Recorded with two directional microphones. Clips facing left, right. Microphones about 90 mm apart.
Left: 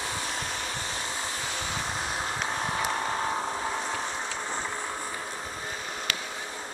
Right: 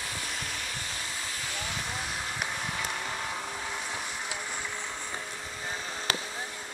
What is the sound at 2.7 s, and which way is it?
Vehicle, 35° left (ahead or behind).